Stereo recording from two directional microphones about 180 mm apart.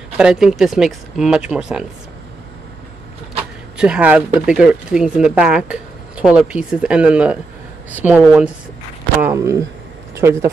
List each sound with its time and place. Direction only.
0.2 s speech: 5° right (ahead or behind)
3.7 s speech: 5° right (ahead or behind)